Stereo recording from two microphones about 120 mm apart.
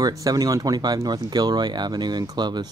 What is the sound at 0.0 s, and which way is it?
Speech, 30° right (ahead or behind).